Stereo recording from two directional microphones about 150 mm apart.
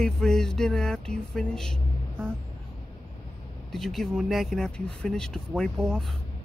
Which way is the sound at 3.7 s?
Centre (ahead or behind).